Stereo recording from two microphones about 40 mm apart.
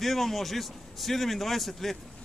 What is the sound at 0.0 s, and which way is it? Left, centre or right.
A man's voice, centre.